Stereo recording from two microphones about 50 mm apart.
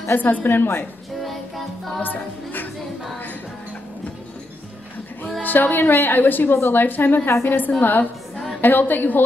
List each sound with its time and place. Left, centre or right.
0.1 s a woman's voice: left
2.0 s music: left
5.4 s a woman's voice: left